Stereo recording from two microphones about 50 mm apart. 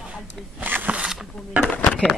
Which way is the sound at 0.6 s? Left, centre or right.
Right.